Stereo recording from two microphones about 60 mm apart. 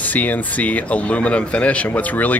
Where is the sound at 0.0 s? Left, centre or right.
Left.